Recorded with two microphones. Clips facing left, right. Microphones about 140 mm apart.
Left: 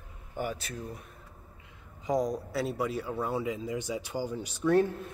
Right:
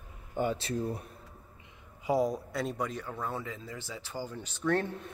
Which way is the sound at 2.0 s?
5° right (ahead or behind).